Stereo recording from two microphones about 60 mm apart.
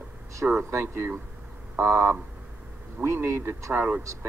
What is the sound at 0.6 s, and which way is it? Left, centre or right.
Speech, right.